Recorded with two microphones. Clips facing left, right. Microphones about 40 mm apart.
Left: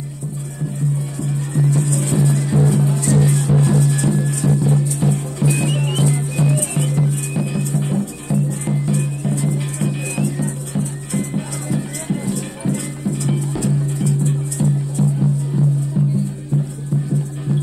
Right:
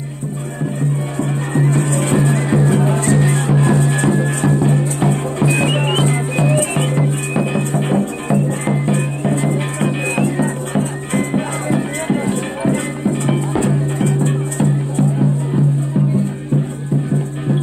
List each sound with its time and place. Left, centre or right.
1.1 s music: right